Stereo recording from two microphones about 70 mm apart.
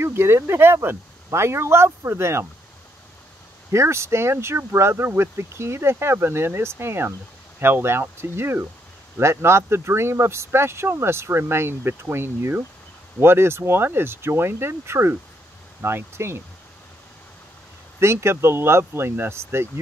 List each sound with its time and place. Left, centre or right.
0.0 s speech: right
3.7 s speech: right
17.9 s speech: right